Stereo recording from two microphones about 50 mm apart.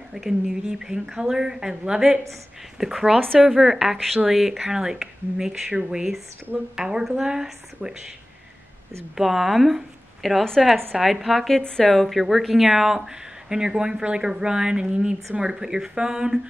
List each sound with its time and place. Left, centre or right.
0.1 s speech: centre
9.1 s a woman's voice: centre
11.6 s a woman's voice: centre
11.9 s speech: centre